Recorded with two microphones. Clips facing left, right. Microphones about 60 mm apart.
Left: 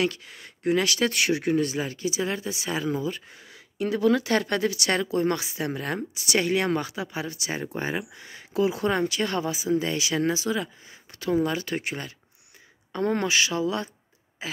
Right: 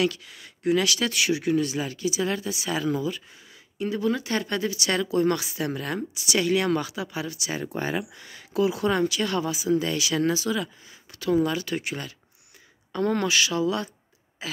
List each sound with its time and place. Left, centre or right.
0.0 s speech: left
3.7 s speech: left
4.9 s speech: left
6.1 s speech: left
7.6 s speech: left
12.9 s speech: left
14.4 s throat clearing: left